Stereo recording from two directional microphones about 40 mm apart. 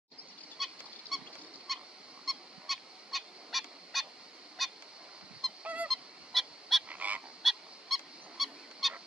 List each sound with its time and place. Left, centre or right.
0.6 s goose: centre
5.6 s goose: right
5.9 s goose: centre
6.9 s goose: right
7.4 s goose: centre